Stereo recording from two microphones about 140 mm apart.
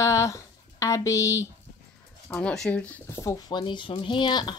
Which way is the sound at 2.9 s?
20° left (ahead or behind).